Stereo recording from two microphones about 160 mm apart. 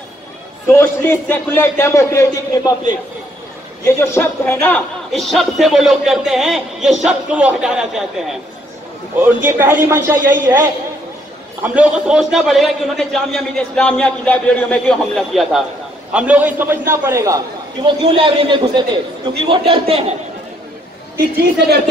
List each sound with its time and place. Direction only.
0.7 s a man's voice: 15° left (ahead or behind)
3.8 s a man's voice: 15° left (ahead or behind); by 10.7 s 20° right (ahead or behind)
11.6 s a man's voice: 10° right (ahead or behind)
17.8 s a man's voice: 35° right (ahead or behind)
21.2 s a woman's voice: 80° right